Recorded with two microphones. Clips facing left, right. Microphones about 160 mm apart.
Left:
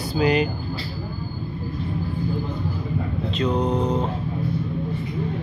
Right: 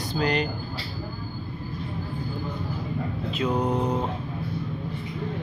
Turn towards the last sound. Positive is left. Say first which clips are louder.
# left 3 dB
turn(degrees=-5)  # may be behind; listen again after turning